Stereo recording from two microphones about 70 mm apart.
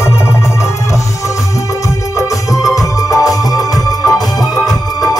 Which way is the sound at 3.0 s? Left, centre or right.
Left.